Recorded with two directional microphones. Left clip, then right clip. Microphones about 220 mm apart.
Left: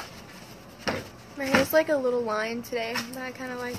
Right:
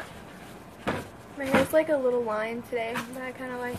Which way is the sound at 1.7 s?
10° left (ahead or behind).